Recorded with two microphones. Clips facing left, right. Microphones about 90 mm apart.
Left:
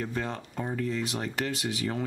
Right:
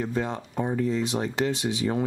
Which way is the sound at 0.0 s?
15° right (ahead or behind).